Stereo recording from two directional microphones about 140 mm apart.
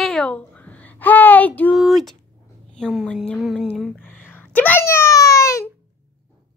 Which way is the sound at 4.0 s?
15° left (ahead or behind).